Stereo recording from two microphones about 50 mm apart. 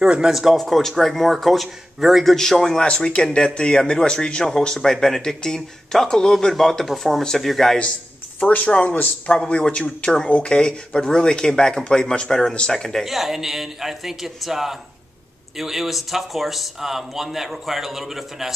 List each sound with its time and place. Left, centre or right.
0.0 s speech: centre
0.3 s speech: centre
0.6 s a man's voice: centre
2.3 s speech: centre
4.5 s speech: centre
8.4 s speech: left; by 13.0 s centre
13.0 s a man's voice: centre